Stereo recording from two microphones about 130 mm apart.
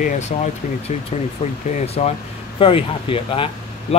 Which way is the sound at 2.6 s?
45° left (ahead or behind).